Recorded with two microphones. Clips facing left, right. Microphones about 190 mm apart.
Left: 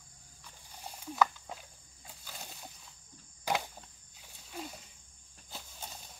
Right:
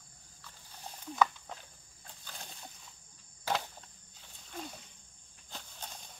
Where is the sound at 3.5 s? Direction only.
10° left (ahead or behind).